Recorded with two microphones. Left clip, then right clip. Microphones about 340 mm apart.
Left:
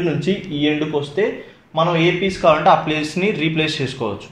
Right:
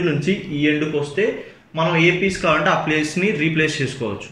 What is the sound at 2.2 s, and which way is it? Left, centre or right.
Speech, centre.